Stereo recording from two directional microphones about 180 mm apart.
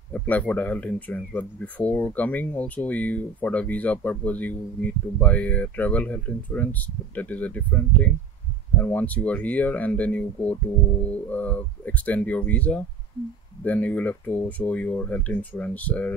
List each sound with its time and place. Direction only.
0.1 s speech: 10° left (ahead or behind)